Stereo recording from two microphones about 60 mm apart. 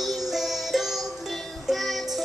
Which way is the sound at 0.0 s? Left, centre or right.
Centre.